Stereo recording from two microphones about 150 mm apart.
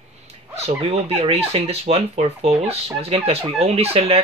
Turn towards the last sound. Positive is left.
turn(degrees=-40)  # may be behind; listen again after turning